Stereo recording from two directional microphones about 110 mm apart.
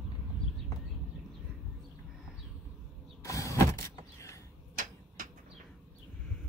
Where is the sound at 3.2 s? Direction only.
30° left (ahead or behind).